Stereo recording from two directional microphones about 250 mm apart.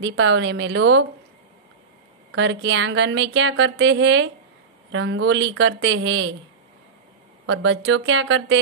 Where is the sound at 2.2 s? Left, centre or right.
Right.